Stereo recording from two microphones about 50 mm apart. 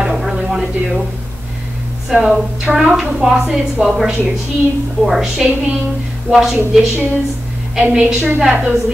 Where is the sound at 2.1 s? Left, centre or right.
Centre.